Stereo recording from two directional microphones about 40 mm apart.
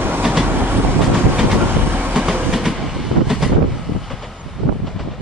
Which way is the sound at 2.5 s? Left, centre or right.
Centre.